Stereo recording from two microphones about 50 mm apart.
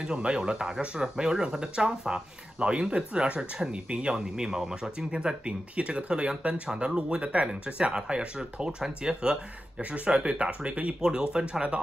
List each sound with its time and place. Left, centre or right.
0.0 s speech: centre
9.8 s speech: right